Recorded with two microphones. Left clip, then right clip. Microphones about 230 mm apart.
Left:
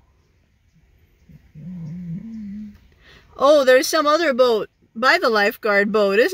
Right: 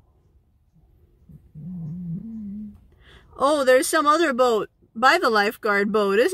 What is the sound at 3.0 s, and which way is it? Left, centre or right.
Speech, centre.